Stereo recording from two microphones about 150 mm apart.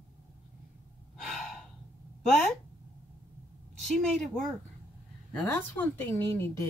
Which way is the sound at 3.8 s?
5° left (ahead or behind).